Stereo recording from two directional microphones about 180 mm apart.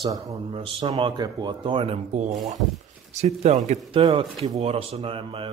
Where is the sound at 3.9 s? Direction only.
30° right (ahead or behind).